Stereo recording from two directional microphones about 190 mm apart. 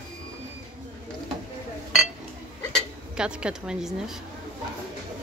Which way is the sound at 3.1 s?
5° right (ahead or behind).